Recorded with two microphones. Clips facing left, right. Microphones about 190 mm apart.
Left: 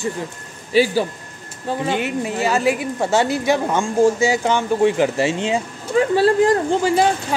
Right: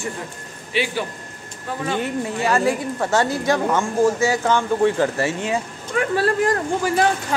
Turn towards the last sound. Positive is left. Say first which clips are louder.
# left 4 dB
turn(degrees=25)  # may be behind; listen again after turning